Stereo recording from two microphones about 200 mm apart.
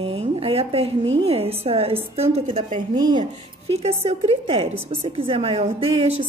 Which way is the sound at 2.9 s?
20° right (ahead or behind).